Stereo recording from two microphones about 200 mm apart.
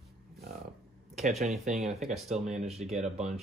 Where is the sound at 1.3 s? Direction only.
Centre (ahead or behind).